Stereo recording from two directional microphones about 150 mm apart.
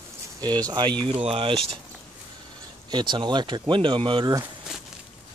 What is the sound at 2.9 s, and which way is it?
Speech, 30° right (ahead or behind).